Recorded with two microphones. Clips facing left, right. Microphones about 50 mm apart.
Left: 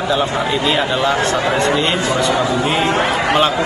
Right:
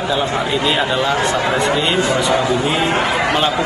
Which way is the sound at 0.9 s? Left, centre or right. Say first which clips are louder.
Left 1 dB; left.